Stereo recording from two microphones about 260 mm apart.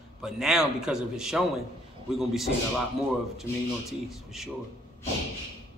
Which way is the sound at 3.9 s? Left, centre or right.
Centre.